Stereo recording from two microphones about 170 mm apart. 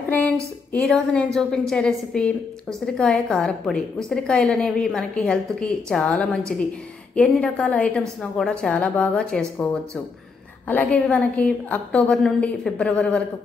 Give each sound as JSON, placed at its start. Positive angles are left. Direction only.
{"t": 0.7, "sound": "a woman's voice", "side_deg": 0}